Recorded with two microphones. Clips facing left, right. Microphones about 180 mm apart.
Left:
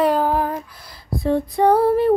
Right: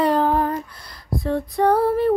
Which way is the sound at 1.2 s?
25° left (ahead or behind).